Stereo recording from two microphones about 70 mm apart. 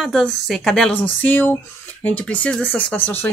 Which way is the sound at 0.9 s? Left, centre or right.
Left.